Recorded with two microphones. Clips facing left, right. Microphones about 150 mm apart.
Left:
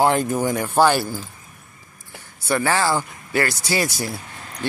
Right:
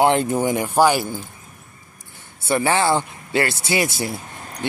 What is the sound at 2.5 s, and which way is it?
Speech, 20° right (ahead or behind).